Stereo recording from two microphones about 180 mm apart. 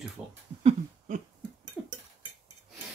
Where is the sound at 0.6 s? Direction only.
40° right (ahead or behind).